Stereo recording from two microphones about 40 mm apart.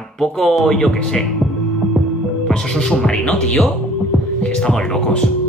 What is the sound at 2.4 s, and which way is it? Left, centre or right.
Speech, centre.